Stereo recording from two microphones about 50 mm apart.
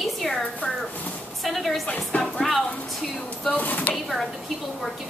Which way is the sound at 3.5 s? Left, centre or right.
Left.